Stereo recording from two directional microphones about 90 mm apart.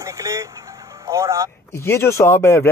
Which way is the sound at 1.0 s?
35° right (ahead or behind).